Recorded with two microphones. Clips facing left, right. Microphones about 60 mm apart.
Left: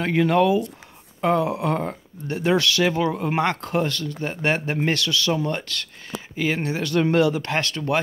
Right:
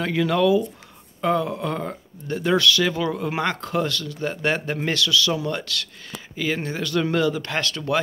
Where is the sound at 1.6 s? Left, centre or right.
Left.